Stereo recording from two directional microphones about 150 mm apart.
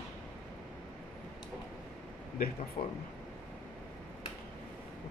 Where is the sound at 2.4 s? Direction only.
85° left.